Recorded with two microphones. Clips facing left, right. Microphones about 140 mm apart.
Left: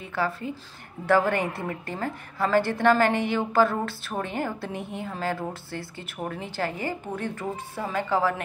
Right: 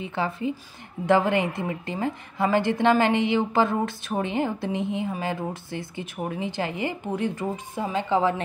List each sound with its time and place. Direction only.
0.0 s a woman's voice: 20° right (ahead or behind)